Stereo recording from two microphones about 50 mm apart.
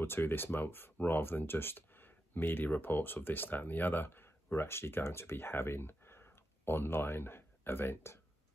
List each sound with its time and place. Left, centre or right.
0.0 s speech: left